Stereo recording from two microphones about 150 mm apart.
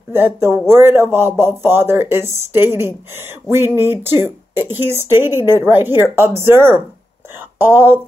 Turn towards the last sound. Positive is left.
turn(degrees=-15)  # may be behind; listen again after turning